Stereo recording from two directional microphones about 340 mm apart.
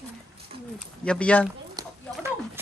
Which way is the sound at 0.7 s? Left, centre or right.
Centre.